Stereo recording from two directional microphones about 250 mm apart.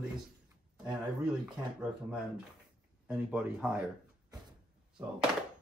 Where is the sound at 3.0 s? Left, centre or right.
Centre.